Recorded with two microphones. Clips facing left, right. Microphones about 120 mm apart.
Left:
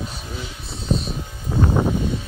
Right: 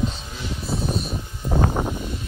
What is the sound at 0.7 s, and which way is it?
Music, 55° right (ahead or behind).